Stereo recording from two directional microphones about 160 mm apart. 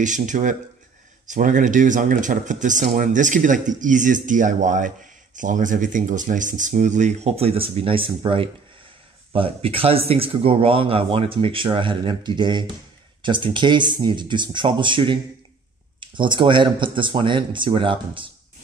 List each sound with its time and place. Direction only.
0.0 s a man's voice: 50° right (ahead or behind); by 18.3 s 35° right (ahead or behind)